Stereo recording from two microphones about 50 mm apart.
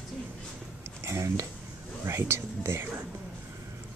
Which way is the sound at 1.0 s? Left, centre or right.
Right.